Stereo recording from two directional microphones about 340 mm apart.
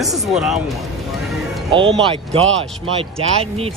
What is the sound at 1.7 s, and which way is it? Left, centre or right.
Speech, centre.